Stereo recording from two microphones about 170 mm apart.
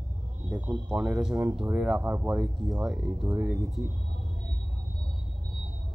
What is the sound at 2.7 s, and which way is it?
Speech, centre (ahead or behind).